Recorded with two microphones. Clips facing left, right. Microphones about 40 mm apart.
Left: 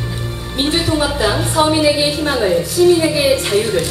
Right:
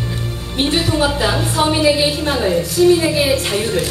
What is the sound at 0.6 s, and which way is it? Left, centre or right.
A woman's voice, centre.